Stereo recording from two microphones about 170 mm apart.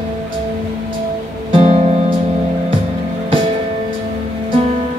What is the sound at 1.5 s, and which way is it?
Music, 40° right (ahead or behind).